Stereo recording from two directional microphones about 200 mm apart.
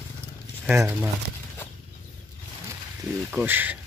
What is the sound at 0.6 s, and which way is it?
Speech, 10° right (ahead or behind).